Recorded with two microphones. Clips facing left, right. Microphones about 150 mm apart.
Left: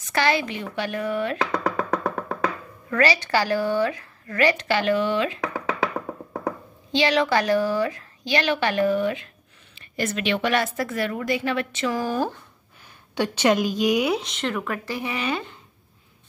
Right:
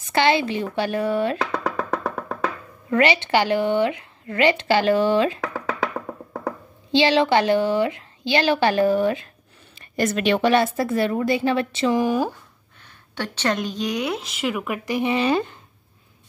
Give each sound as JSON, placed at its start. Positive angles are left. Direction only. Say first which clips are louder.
{"t": 0.1, "sound": "speech", "louder": "right 4 dB", "side_deg": -25}
{"t": 1.4, "sound": "music", "louder": "even", "side_deg": 0}
{"t": 2.9, "sound": "a woman's voice", "louder": "right 3 dB", "side_deg": -25}
{"t": 6.9, "sound": "a woman's voice", "louder": "right 3 dB", "side_deg": -30}
{"t": 10.5, "sound": "a woman's voice", "louder": "right 5 dB", "side_deg": -30}
{"t": 12.0, "sound": "speech", "louder": "right 4 dB", "side_deg": -10}
{"t": 13.1, "sound": "speech", "louder": "left 4 dB", "side_deg": 15}
{"t": 15.1, "sound": "speech", "louder": "right 7 dB", "side_deg": -35}